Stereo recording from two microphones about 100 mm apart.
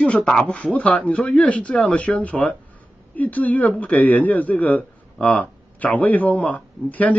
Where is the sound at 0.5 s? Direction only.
15° left (ahead or behind).